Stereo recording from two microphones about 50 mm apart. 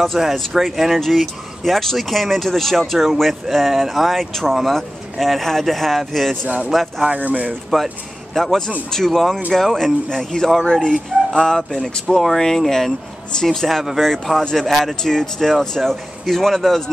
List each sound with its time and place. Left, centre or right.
0.2 s speech: centre
6.4 s speech: right
6.7 s speech: centre
7.1 s speech: right
8.4 s speech: centre
14.7 s speech: centre
15.0 s speech: centre